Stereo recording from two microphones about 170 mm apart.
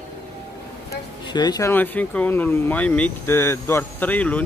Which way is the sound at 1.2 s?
25° left (ahead or behind).